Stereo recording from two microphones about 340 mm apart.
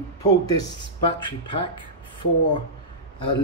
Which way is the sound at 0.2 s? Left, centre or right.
Centre.